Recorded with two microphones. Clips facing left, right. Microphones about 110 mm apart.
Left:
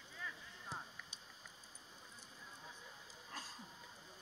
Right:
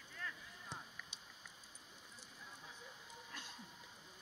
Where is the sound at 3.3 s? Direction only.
35° left (ahead or behind).